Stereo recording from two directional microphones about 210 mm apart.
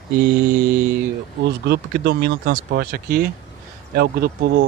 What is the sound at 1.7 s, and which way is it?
Speech, 50° right (ahead or behind).